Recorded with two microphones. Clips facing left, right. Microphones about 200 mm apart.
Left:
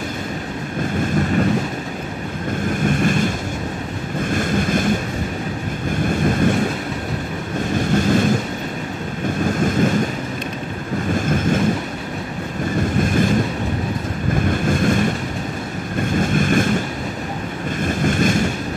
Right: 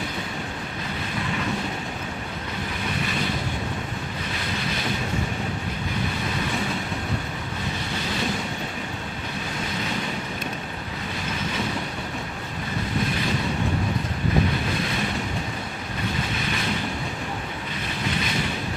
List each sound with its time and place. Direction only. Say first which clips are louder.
1.0 s vehicle: left 11 dB; 45° left (ahead or behind)
2.7 s waves: left 11 dB; 50° left (ahead or behind)
6.0 s vehicle: left 15 dB; 50° left (ahead or behind)
7.7 s wind noise: left 16 dB; 45° left (ahead or behind)
9.4 s wind noise: left 14 dB; 45° left (ahead or behind)
11.1 s vehicle: left 10 dB; 50° left (ahead or behind)
13.1 s train: left 9 dB; 50° left (ahead or behind)
14.5 s boat: left 9 dB; 50° left (ahead or behind)
16.0 s vehicle: left 11 dB; 50° left (ahead or behind)
17.7 s boat: left 10 dB; 50° left (ahead or behind)